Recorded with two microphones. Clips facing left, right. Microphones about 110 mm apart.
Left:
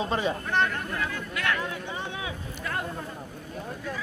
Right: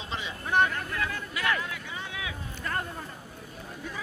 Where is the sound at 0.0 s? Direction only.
45° left (ahead or behind).